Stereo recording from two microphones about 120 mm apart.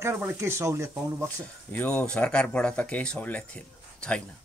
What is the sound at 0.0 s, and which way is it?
Speech, 15° right (ahead or behind).